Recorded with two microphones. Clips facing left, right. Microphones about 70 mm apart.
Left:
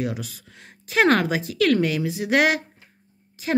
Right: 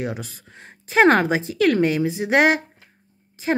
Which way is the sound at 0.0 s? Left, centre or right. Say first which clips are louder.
Even; right.